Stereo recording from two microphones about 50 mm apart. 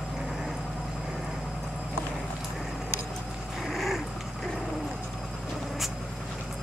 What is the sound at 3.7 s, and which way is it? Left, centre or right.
Dog, centre.